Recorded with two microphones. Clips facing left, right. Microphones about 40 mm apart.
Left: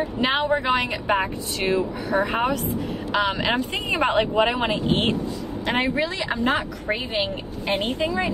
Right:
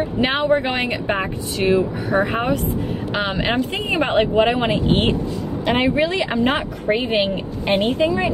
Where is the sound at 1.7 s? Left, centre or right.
Right.